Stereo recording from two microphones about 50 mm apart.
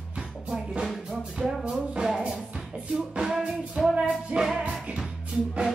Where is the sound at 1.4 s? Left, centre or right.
Centre.